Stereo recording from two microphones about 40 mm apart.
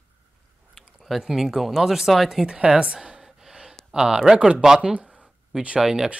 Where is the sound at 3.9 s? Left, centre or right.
Centre.